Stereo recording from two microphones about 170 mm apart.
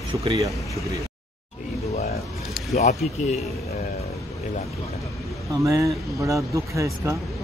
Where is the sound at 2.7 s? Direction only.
40° left (ahead or behind).